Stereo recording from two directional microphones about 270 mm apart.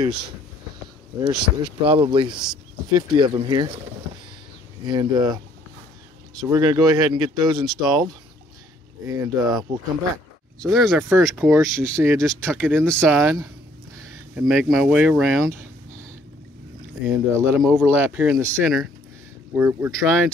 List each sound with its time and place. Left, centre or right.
1.2 s speech: centre
2.3 s speech: centre
2.9 s speech: centre
4.8 s speech: centre
6.5 s speech: centre
7.7 s speech: centre
9.0 s speech: centre
10.7 s speech: centre
12.2 s speech: centre
14.5 s speech: centre
17.0 s speech: centre